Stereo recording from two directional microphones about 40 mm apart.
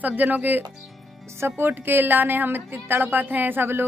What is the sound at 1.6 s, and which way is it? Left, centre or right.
A woman's voice, right.